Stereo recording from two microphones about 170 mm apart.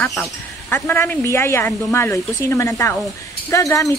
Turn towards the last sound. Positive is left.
turn(degrees=20)  # may be behind; listen again after turning